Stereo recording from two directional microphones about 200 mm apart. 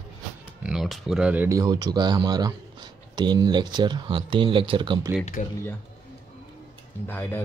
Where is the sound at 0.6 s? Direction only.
Centre (ahead or behind); by 5.1 s 25° right (ahead or behind).